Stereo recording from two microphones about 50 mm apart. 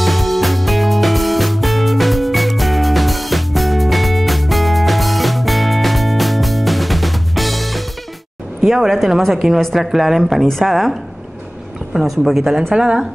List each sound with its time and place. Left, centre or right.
0.0 s music: centre
8.6 s speech: centre